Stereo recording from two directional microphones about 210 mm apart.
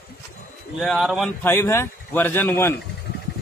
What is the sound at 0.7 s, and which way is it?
A man's voice, centre (ahead or behind).